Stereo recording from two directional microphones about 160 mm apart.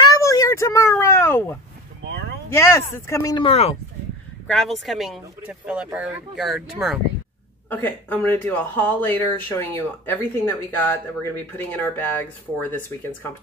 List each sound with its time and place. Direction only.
0.0 s a sound: 20° left (ahead or behind)
2.5 s speech: 15° left (ahead or behind)
3.3 s speech: 35° left (ahead or behind)
4.5 s speech: centre (ahead or behind)
7.7 s speech: 10° left (ahead or behind)